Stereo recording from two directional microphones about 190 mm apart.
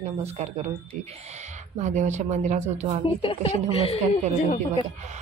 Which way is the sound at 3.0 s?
30° left (ahead or behind).